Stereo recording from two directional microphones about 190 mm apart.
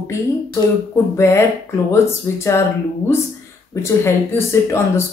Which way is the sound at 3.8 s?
15° left (ahead or behind).